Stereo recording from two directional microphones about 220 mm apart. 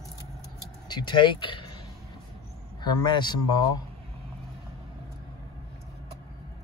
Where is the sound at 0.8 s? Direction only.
20° left (ahead or behind).